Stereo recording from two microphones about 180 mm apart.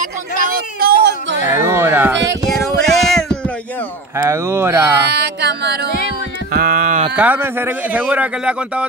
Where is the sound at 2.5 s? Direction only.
Centre (ahead or behind).